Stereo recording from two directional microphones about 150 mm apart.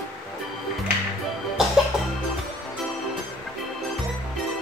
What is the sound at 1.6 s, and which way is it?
Music, 5° right (ahead or behind).